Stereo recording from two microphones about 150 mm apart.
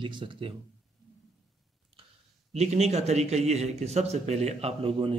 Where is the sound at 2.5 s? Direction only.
45° right (ahead or behind).